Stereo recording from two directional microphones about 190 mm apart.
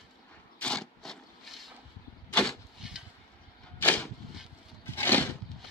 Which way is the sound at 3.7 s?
10° left (ahead or behind).